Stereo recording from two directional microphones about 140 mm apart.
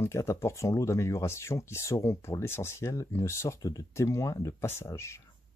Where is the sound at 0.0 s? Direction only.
20° left (ahead or behind).